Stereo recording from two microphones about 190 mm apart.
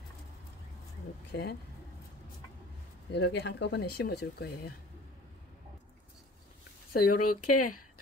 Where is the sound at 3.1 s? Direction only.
65° left (ahead or behind).